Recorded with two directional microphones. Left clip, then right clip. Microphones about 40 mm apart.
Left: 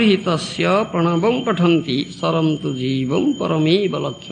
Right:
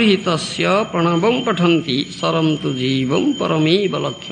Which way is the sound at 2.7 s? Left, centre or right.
Right.